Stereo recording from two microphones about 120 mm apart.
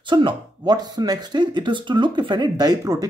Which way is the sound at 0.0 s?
40° right (ahead or behind).